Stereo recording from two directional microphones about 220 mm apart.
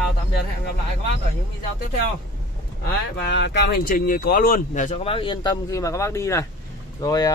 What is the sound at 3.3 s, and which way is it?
Speech, 50° left (ahead or behind).